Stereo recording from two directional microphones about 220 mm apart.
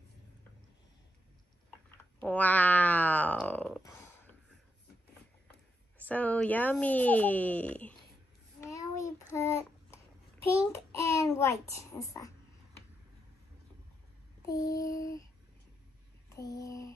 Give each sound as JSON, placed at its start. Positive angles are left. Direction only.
{"t": 2.1, "sound": "speech", "side_deg": 5}
{"t": 6.0, "sound": "speech", "side_deg": 5}
{"t": 8.5, "sound": "a sound", "side_deg": 15}
{"t": 9.3, "sound": "child singing", "side_deg": 10}
{"t": 10.7, "sound": "a sound", "side_deg": 15}
{"t": 11.9, "sound": "speech", "side_deg": 15}
{"t": 14.4, "sound": "speech", "side_deg": 15}
{"t": 16.3, "sound": "lullaby", "side_deg": 15}